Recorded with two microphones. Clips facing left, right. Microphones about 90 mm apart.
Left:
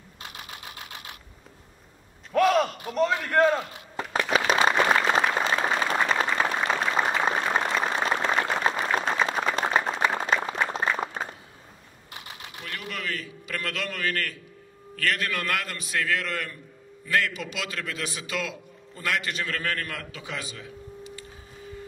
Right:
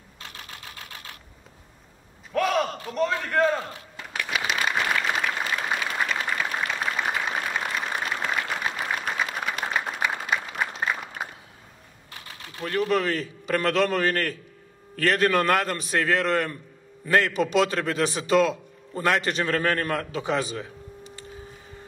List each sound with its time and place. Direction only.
0.2 s camera: 15° left (ahead or behind)
2.3 s a sound: centre (ahead or behind)
2.9 s a man's voice: 5° left (ahead or behind)
3.9 s applause: 40° left (ahead or behind)
12.1 s typing: 20° left (ahead or behind)
12.6 s a man's voice: 40° right (ahead or behind)